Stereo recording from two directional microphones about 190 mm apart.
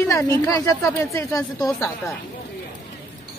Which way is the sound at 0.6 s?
15° left (ahead or behind).